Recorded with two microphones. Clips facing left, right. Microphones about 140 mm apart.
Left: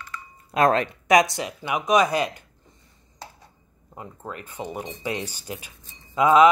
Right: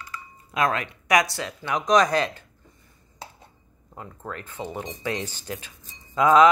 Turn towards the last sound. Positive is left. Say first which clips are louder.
# even
turn(degrees=10)  # may be behind; listen again after turning